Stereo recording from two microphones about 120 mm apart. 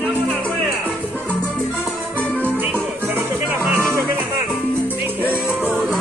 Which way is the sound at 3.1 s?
15° right (ahead or behind).